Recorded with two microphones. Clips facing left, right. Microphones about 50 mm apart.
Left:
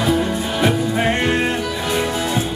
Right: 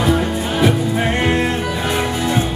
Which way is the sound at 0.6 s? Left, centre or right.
Centre.